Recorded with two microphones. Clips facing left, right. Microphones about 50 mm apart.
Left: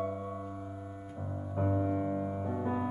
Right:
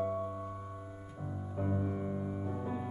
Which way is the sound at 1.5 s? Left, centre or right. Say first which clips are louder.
Left 5 dB; centre.